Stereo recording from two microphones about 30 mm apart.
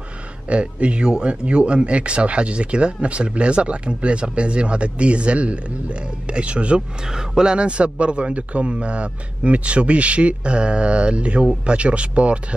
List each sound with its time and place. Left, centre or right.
0.5 s speech: right
7.1 s speech: right
7.5 s speech: right